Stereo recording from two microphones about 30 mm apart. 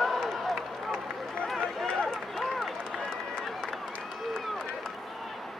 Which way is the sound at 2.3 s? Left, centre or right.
Centre.